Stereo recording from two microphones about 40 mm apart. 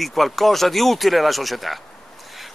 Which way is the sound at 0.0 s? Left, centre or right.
Centre.